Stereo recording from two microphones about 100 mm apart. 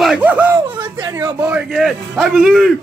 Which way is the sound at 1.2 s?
15° right (ahead or behind).